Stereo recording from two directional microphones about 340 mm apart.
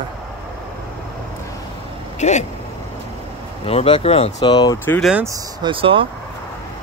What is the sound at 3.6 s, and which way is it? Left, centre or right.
Speech, centre.